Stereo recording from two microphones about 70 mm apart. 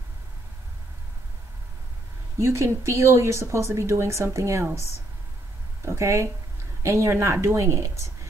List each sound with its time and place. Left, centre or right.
2.3 s speech: right
5.8 s speech: right